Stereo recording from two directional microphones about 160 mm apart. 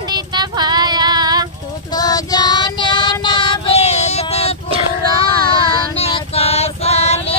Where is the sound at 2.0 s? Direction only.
25° left (ahead or behind); by 4.5 s 40° left (ahead or behind).